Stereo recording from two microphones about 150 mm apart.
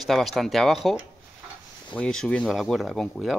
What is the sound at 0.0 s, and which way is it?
Speech, centre (ahead or behind).